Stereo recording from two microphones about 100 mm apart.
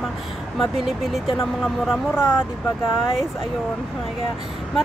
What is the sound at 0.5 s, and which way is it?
Speech, centre (ahead or behind).